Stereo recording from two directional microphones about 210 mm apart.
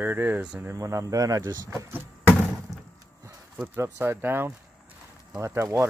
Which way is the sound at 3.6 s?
10° right (ahead or behind).